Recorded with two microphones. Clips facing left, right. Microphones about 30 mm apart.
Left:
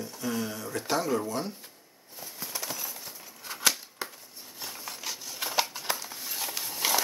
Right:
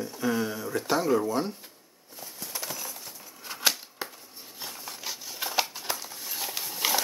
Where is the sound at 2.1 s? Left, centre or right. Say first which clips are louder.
Even; centre.